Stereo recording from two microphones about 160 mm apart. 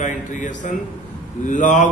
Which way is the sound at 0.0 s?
50° left (ahead or behind).